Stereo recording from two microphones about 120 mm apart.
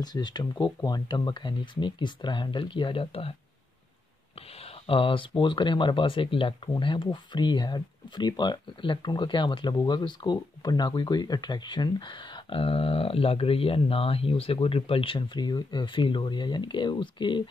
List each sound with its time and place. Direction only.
0.0 s speech: 35° left (ahead or behind); by 3.3 s 55° left (ahead or behind)
4.8 s speech: 50° left (ahead or behind)